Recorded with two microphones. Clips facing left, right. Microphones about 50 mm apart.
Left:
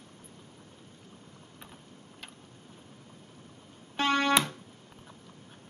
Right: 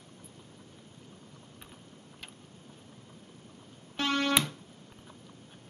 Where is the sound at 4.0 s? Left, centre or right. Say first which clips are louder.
Left 3 dB; left.